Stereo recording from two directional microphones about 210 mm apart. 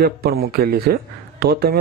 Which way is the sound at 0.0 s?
45° right (ahead or behind).